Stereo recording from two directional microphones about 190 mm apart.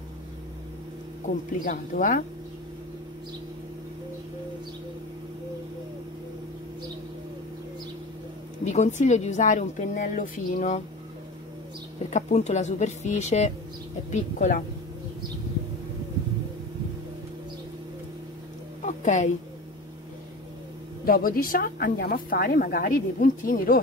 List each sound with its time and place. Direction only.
1.2 s a woman's voice: 45° left (ahead or behind)
8.6 s a woman's voice: 40° left (ahead or behind)
12.1 s a woman's voice: 40° left (ahead or behind)
18.8 s a sound: 40° left (ahead or behind)
21.0 s a woman's voice: 50° left (ahead or behind)